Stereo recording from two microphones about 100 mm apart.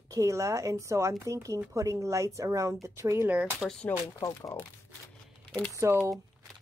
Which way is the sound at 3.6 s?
5° left (ahead or behind).